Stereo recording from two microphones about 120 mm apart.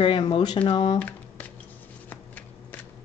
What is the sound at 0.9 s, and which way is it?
Computer keyboard, 15° left (ahead or behind).